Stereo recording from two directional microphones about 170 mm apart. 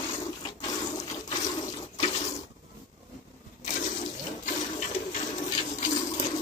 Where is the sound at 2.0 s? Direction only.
35° left (ahead or behind).